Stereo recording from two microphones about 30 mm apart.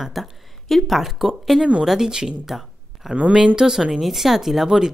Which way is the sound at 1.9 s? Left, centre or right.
Centre.